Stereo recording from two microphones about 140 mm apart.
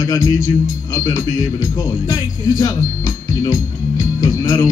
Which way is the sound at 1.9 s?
20° left (ahead or behind).